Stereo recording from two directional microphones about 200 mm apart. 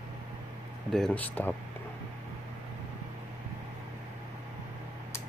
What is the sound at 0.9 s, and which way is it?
Speech, 5° left (ahead or behind).